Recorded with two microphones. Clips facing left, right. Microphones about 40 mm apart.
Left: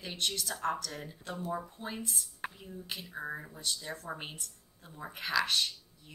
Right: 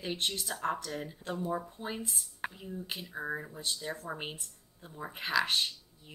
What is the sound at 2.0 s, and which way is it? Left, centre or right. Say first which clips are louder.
Speech: right 1 dB; centre.